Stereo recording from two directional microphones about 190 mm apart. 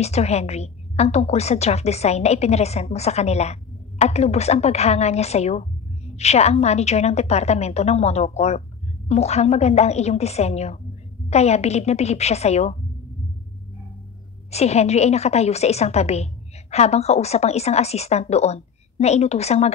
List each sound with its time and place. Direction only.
0.0 s a woman's voice: 35° left (ahead or behind)
14.5 s a woman's voice: 35° left (ahead or behind)